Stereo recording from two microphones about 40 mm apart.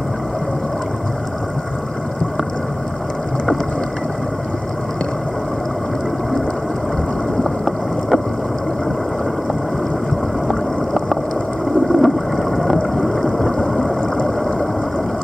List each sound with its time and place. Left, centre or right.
7.4 s boat: centre
11.9 s boat: centre